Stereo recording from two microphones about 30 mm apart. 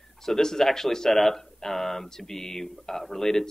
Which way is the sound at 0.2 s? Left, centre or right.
Centre.